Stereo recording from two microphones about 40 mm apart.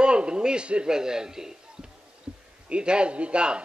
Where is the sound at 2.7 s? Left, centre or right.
Right.